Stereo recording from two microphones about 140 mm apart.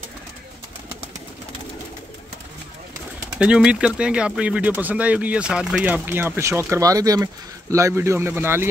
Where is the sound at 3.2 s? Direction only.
5° right (ahead or behind).